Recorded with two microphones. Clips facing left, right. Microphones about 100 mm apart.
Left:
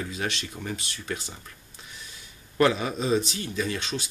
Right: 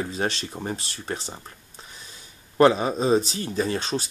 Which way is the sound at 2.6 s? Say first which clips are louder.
Right 5 dB; 35° right (ahead or behind).